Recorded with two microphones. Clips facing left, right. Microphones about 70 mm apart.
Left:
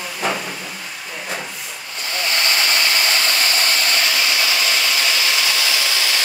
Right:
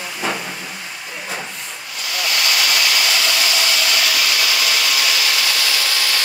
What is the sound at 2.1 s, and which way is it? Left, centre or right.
Hair dryer, left.